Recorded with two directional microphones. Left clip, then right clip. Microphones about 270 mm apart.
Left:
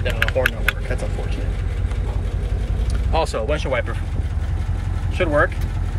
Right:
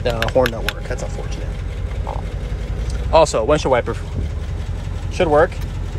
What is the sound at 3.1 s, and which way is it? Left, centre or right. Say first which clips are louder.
Speech: right 8 dB; centre.